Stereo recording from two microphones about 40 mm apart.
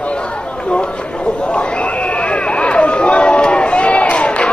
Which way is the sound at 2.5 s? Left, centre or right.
Left.